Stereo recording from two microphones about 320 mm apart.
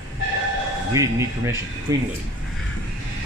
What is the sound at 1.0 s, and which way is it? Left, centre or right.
Speech, centre.